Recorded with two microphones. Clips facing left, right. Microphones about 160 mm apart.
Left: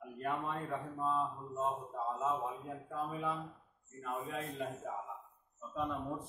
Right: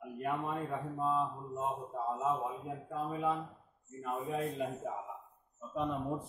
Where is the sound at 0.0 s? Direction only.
10° right (ahead or behind).